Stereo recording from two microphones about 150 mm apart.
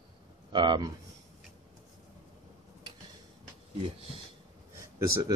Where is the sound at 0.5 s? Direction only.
30° right (ahead or behind).